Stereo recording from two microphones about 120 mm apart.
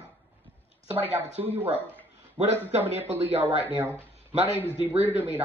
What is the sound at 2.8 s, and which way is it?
A man's voice, 15° right (ahead or behind).